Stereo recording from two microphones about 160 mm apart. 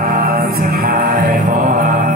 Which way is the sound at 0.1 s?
60° right (ahead or behind).